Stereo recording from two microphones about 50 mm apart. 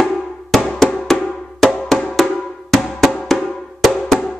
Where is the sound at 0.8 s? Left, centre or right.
Centre.